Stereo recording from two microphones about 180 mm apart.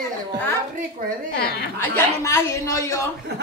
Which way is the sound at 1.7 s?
15° left (ahead or behind).